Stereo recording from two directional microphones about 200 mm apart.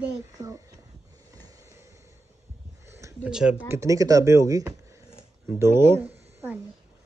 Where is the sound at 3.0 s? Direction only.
5° right (ahead or behind).